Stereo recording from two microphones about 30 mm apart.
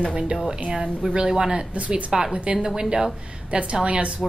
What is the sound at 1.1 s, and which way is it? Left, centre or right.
A woman's voice, right.